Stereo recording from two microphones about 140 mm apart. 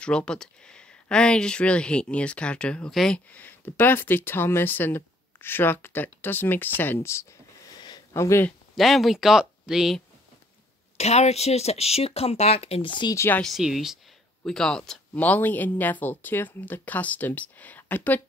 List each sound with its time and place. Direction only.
0.0 s speech: 5° left (ahead or behind)
7.8 s a sound: 25° left (ahead or behind)
8.5 s speech: centre (ahead or behind)
11.0 s speech: 50° left (ahead or behind)
13.1 s speech: 20° left (ahead or behind)
13.4 s speech: centre (ahead or behind)